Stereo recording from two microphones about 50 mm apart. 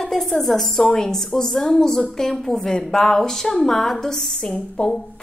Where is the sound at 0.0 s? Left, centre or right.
Centre.